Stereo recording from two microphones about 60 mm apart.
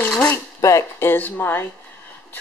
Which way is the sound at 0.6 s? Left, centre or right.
Left.